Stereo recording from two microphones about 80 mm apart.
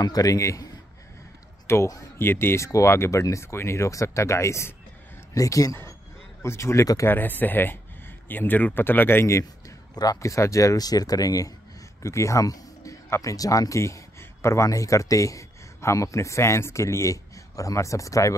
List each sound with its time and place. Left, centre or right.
0.0 s speech: left
1.7 s speech: left
7.1 s speech: left
10.2 s speech: left
12.0 s speech: left